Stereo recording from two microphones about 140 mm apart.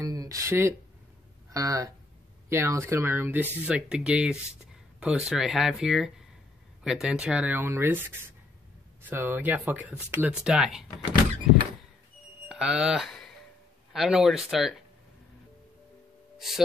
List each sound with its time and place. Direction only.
0.0 s speech: 25° right (ahead or behind); by 11.1 s 5° right (ahead or behind)
12.4 s speech: 5° right (ahead or behind)
16.3 s speech: centre (ahead or behind)